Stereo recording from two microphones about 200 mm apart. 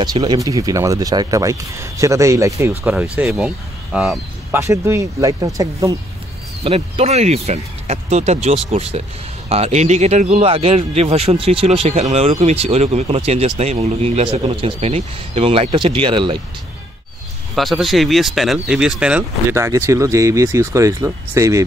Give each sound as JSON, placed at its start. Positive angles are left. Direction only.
{"t": 0.0, "sound": "speech", "side_deg": -20}
{"t": 4.6, "sound": "speech", "side_deg": -15}
{"t": 6.6, "sound": "speech", "side_deg": -30}
{"t": 17.6, "sound": "speech", "side_deg": 0}